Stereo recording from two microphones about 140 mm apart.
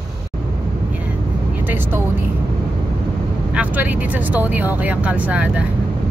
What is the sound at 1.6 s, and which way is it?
Vehicle, 15° right (ahead or behind).